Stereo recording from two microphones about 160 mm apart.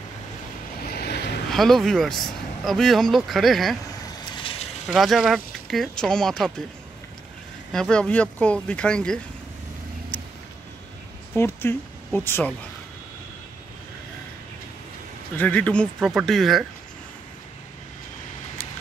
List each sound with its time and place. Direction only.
0.8 s vehicle: 85° left
1.5 s speech: centre (ahead or behind)
4.8 s speech: centre (ahead or behind)
7.7 s speech: 5° left (ahead or behind)
10.1 s vehicle: 10° left (ahead or behind)
11.3 s speech: 15° left (ahead or behind)
15.3 s speech: 10° left (ahead or behind)